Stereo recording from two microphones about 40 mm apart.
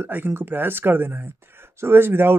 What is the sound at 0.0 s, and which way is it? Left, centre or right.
Speech, right.